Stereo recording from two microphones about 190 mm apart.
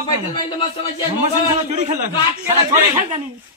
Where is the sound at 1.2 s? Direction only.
40° right (ahead or behind).